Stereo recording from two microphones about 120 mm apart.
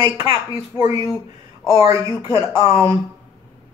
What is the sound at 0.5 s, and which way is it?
Speech, 25° right (ahead or behind).